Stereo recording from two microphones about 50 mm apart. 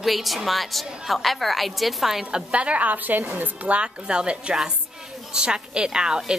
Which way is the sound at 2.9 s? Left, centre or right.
Right.